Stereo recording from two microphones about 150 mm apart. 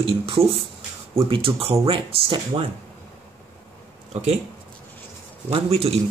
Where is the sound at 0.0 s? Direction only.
40° right (ahead or behind).